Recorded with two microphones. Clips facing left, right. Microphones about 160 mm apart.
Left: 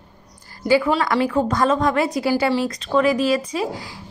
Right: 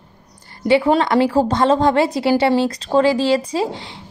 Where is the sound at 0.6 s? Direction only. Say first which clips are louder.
Right 3 dB; 25° right (ahead or behind).